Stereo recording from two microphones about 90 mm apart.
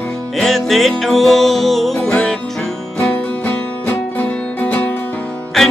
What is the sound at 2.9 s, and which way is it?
Music, 20° left (ahead or behind).